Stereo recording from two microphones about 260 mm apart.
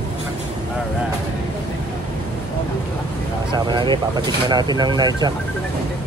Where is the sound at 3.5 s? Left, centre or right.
Centre.